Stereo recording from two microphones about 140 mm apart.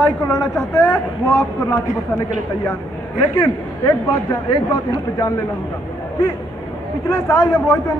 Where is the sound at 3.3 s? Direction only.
25° left (ahead or behind).